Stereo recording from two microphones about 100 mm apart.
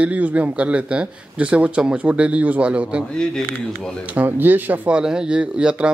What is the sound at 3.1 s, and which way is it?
Speech, 5° left (ahead or behind).